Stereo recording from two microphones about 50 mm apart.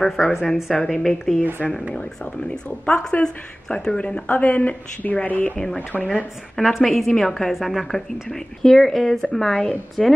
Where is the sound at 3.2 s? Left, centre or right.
Centre.